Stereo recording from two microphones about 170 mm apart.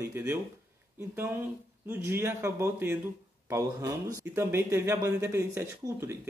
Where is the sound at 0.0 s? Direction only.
15° right (ahead or behind).